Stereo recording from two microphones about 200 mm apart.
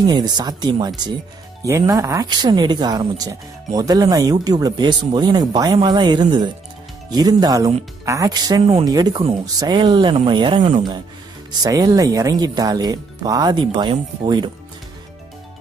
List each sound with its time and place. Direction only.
0.0 s speech: 20° right (ahead or behind)